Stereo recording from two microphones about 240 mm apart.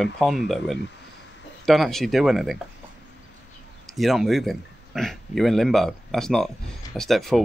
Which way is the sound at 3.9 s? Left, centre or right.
Centre.